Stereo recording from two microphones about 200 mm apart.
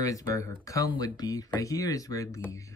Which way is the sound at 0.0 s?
15° left (ahead or behind).